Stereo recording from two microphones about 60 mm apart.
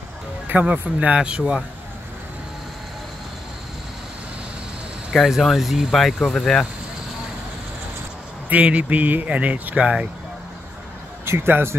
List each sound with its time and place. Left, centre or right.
0.5 s speech: right
5.1 s speech: centre
8.5 s speech: right
11.2 s speech: right